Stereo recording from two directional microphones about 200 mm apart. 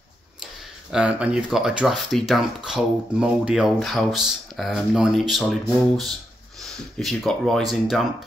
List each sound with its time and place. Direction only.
0.9 s speech: 5° right (ahead or behind)